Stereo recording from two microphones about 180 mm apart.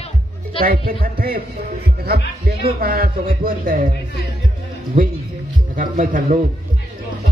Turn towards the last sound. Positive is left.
turn(degrees=-50)  # may be behind; listen again after turning